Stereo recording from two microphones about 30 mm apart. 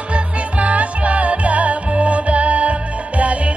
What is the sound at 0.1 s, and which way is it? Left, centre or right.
Music, right.